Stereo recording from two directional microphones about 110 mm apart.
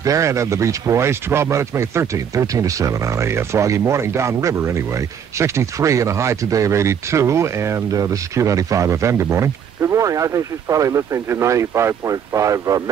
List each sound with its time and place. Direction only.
0.0 s speech: 30° right (ahead or behind)